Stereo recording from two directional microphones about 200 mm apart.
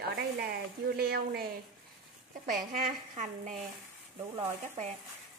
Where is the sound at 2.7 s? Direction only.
40° right (ahead or behind).